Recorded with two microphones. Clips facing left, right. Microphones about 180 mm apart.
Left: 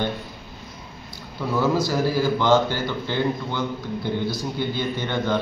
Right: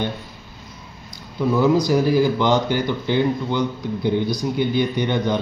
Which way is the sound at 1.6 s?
15° right (ahead or behind).